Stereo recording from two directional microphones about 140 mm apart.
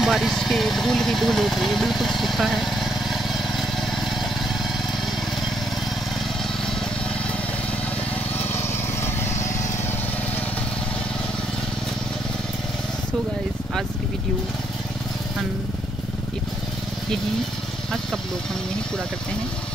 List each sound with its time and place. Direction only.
0.0 s vehicle: centre (ahead or behind)
8.5 s lawn mower: 15° left (ahead or behind)